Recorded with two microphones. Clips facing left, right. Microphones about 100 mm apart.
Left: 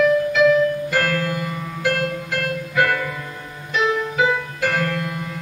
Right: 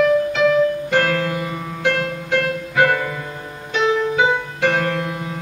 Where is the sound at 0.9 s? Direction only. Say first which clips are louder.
Right 3 dB; centre (ahead or behind).